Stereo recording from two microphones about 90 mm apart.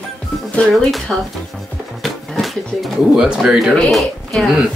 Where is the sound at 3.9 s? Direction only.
5° left (ahead or behind).